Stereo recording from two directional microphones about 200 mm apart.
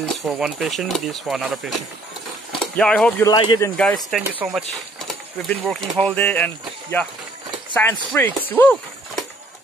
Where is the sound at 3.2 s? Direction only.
20° left (ahead or behind).